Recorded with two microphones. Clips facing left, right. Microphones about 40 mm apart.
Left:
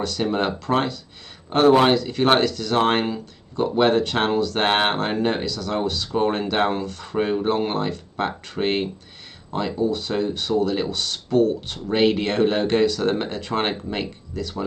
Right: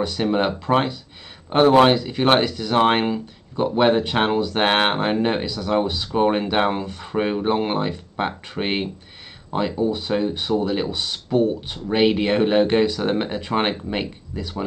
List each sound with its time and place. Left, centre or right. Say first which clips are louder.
0.0 s speech: right 2 dB; centre